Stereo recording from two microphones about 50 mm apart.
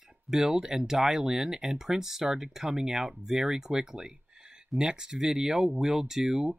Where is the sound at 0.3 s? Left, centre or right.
Centre.